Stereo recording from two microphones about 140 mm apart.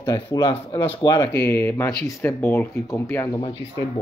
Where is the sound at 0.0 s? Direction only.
25° left (ahead or behind).